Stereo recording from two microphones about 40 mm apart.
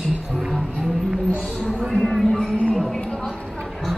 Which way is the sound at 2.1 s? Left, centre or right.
Centre.